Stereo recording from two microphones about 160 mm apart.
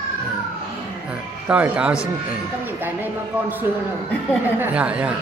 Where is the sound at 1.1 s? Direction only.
10° right (ahead or behind).